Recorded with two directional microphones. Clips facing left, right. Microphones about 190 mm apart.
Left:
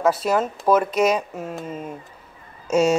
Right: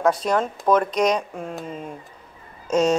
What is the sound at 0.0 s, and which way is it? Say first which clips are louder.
Speech: left 1 dB; 5° left (ahead or behind).